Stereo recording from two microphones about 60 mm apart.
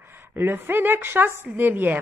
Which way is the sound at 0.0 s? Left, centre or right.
Right.